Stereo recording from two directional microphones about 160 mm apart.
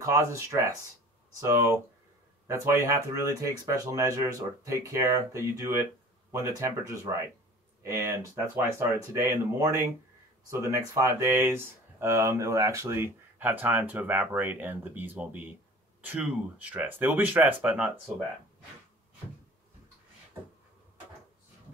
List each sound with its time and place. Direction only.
0.0 s speech: 20° right (ahead or behind)